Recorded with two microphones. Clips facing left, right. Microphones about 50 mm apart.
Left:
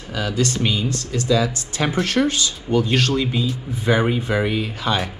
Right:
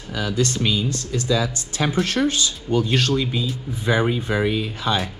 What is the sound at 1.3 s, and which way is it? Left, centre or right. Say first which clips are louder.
Speech: left 3 dB; left.